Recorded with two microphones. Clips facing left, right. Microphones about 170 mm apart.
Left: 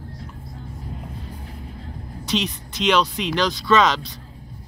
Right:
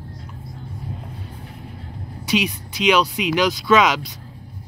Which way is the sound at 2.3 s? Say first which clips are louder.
Right 3 dB; 10° right (ahead or behind).